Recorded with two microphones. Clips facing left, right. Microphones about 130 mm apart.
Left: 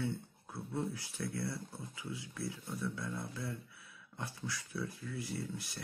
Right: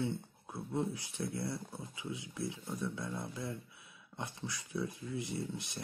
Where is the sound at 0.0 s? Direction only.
20° right (ahead or behind).